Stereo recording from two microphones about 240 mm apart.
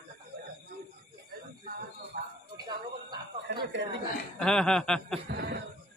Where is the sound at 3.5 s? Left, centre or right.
Right.